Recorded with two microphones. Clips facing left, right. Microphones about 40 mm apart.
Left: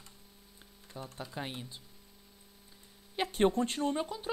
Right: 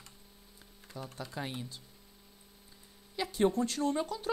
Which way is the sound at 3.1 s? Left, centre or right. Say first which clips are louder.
Left 1 dB; left.